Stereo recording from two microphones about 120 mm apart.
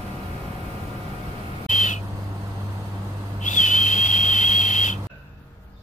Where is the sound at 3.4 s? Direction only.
90° left.